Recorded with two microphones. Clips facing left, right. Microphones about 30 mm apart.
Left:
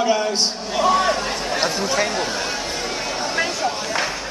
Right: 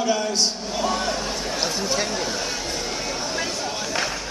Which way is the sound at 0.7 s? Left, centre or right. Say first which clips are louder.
Left 10 dB; left.